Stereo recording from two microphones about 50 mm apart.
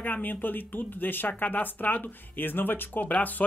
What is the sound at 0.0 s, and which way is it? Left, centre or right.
Speech, left.